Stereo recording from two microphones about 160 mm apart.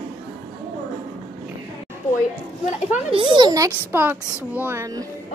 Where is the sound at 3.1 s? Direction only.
30° right (ahead or behind).